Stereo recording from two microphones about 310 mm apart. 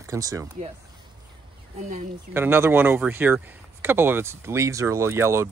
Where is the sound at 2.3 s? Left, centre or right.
Centre.